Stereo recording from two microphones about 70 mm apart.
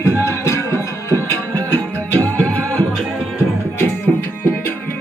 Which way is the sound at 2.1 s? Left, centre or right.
Left.